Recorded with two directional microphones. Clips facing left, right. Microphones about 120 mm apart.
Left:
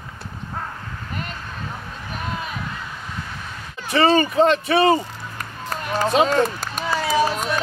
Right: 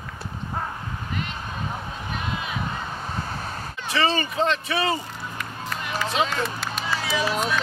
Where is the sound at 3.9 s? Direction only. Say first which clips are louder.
Left 7 dB; 45° left (ahead or behind).